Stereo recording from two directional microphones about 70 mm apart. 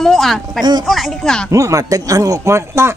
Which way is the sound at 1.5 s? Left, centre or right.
Right.